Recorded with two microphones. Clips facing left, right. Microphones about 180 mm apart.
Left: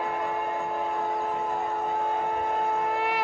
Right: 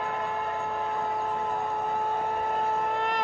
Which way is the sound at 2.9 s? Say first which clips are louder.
Left 1 dB; 5° left (ahead or behind).